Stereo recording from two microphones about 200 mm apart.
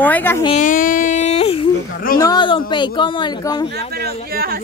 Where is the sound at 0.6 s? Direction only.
45° left (ahead or behind).